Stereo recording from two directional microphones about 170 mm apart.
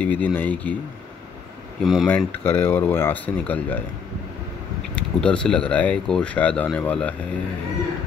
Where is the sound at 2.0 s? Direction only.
10° left (ahead or behind).